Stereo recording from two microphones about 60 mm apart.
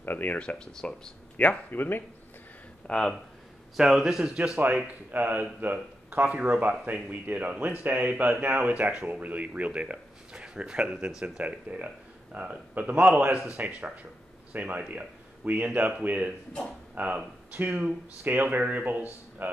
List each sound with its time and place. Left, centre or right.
0.0 s speech: left
0.4 s speech: centre
1.3 s speech: left
2.8 s speech: centre
3.7 s a man's voice: centre
4.8 s speech: right